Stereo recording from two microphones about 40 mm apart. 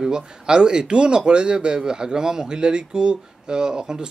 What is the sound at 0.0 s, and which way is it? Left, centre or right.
A man's voice, centre.